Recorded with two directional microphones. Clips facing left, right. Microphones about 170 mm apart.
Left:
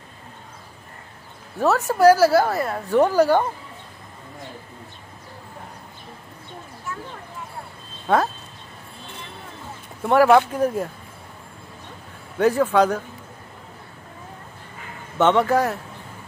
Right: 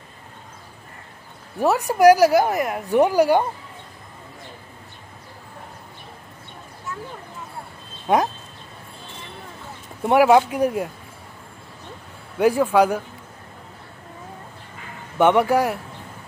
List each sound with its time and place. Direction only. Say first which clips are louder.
1.6 s a woman's voice: right 1 dB; 15° right (ahead or behind)
8.1 s a woman's voice: right 1 dB; 15° right (ahead or behind)
10.0 s a woman's voice: even; 15° right (ahead or behind)
12.4 s a woman's voice: right 1 dB; 10° right (ahead or behind)
15.1 s a woman's voice: right 1 dB; 10° right (ahead or behind)